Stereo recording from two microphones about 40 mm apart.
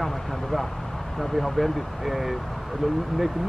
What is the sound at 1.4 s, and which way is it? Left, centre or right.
Speech, centre.